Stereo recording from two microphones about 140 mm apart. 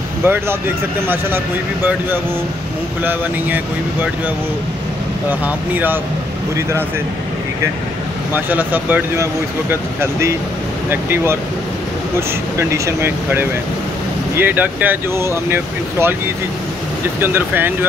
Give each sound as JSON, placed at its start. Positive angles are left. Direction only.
{"t": 0.2, "sound": "speech", "side_deg": -15}
{"t": 3.0, "sound": "speech", "side_deg": -15}
{"t": 5.4, "sound": "speech", "side_deg": -10}
{"t": 8.3, "sound": "speech", "side_deg": -15}
{"t": 12.5, "sound": "speech", "side_deg": -20}
{"t": 17.2, "sound": "speech", "side_deg": -15}